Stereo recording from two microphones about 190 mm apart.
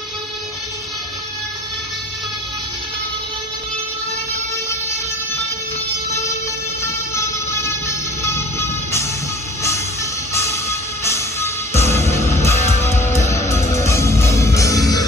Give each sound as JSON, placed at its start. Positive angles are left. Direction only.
{"t": 8.2, "sound": "music", "side_deg": 15}
{"t": 10.3, "sound": "music", "side_deg": 15}